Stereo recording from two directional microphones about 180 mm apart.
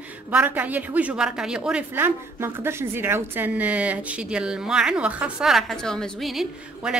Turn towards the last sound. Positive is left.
turn(degrees=-5)  # may be behind; listen again after turning